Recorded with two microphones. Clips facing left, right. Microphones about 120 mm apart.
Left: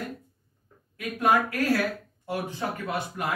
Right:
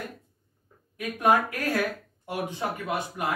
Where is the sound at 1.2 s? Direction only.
15° right (ahead or behind).